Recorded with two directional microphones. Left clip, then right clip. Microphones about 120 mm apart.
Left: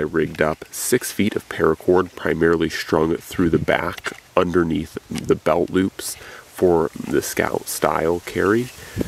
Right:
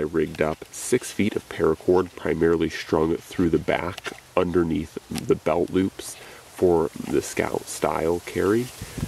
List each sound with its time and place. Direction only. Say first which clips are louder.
0.0 s speech: left 4 dB; 35° left (ahead or behind)